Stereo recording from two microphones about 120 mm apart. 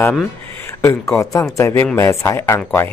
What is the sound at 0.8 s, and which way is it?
Speech, 25° left (ahead or behind).